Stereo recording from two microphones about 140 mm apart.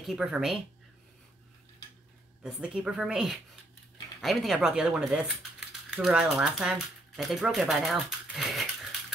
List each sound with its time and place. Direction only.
0.0 s speech: 5° right (ahead or behind)
2.4 s speech: 5° right (ahead or behind)